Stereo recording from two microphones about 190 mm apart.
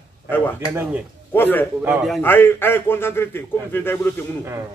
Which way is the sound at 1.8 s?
5° right (ahead or behind).